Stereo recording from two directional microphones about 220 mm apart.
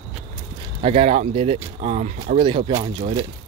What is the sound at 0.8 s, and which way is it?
Speech, 30° right (ahead or behind).